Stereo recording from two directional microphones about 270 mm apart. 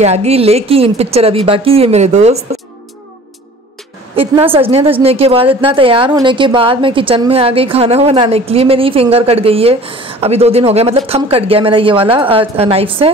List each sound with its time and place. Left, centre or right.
0.0 s a woman's voice: right
4.1 s a woman's voice: right